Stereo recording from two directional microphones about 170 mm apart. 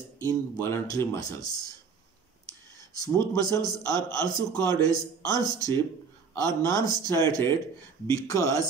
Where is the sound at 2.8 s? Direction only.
20° left (ahead or behind).